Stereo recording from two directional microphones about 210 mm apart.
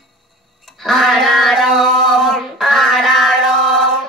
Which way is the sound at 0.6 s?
Centre (ahead or behind).